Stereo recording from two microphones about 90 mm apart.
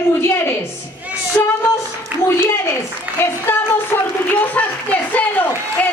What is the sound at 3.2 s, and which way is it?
A woman's voice, 25° left (ahead or behind).